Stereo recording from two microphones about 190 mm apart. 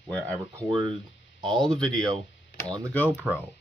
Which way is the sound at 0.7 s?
25° right (ahead or behind).